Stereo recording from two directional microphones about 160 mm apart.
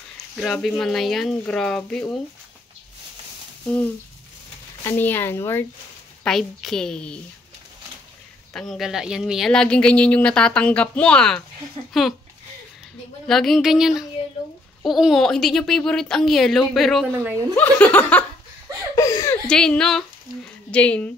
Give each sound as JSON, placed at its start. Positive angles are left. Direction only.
{"t": 0.4, "sound": "speech", "side_deg": 5}
{"t": 4.8, "sound": "speech", "side_deg": 10}
{"t": 6.2, "sound": "speech", "side_deg": 5}
{"t": 8.5, "sound": "speech", "side_deg": 0}
{"t": 11.8, "sound": "speech", "side_deg": -35}
{"t": 13.3, "sound": "speech", "side_deg": 0}
{"t": 18.9, "sound": "speech", "side_deg": 20}
{"t": 19.5, "sound": "speech", "side_deg": 5}